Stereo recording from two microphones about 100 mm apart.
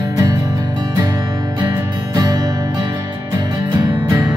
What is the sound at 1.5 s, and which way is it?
Music, 45° right (ahead or behind).